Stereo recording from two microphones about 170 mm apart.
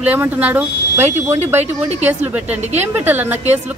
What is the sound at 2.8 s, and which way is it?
Speech, 10° right (ahead or behind).